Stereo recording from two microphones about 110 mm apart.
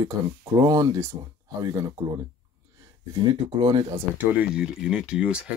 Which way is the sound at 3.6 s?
50° right (ahead or behind).